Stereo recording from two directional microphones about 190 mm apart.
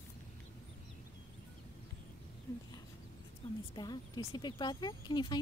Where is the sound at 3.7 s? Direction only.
20° left (ahead or behind).